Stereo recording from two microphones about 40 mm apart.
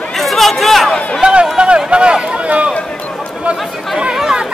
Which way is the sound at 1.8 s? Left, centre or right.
Right.